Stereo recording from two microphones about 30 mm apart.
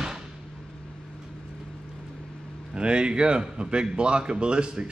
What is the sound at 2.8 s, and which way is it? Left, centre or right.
Speech, right.